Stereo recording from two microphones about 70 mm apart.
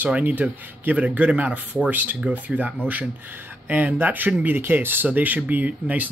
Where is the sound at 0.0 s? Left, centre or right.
Right.